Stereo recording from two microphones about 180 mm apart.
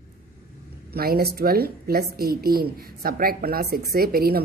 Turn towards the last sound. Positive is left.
turn(degrees=-55)  # may be behind; listen again after turning